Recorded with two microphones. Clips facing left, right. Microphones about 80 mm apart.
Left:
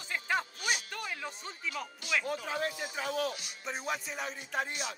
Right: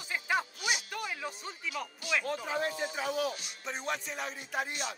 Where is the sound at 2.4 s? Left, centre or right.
Centre.